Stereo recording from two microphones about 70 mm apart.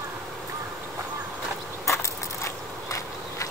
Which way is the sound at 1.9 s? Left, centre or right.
Left.